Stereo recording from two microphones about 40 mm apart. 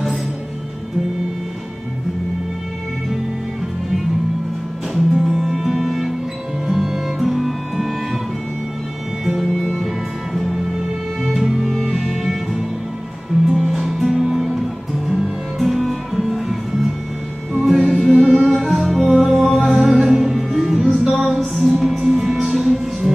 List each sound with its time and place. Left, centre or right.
4.9 s music: centre
9.4 s music: centre
13.5 s music: centre; by 15.3 s right
15.6 s music: centre